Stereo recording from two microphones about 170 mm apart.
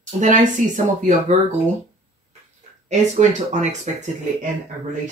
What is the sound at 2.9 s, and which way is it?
Speech, 45° right (ahead or behind).